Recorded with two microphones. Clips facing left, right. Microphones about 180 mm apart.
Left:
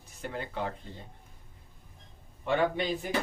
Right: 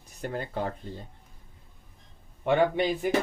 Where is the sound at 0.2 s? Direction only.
40° right (ahead or behind).